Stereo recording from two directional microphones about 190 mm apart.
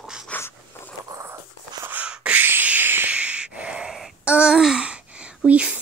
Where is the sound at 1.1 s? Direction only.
15° right (ahead or behind).